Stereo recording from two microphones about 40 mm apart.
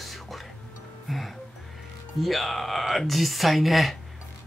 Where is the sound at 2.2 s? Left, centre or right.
Centre.